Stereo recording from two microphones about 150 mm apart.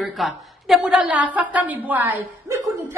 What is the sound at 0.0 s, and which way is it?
A woman's voice, centre (ahead or behind).